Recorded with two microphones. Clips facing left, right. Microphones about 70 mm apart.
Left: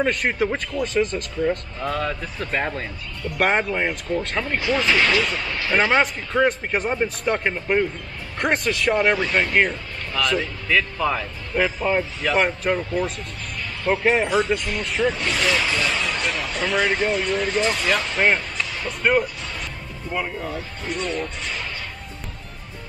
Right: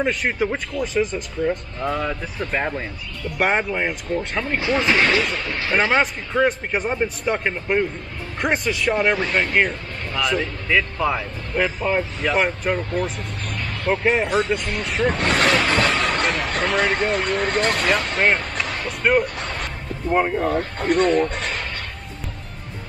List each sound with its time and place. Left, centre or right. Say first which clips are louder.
0.0 s speech: even; centre
4.6 s speech: right 1 dB; right
5.8 s speech: even; centre
15.0 s speech: right 5 dB; right
16.0 s a sound: right 4 dB; right
16.4 s speech: right 3 dB; right
16.7 s speech: left 1 dB; centre
17.4 s speech: right 1 dB; right
18.1 s speech: left 2 dB; centre
18.6 s music: right 2 dB; right
18.9 s speech: right 1 dB; centre
19.2 s speech: right 4 dB; right
20.1 s speech: right 8 dB; right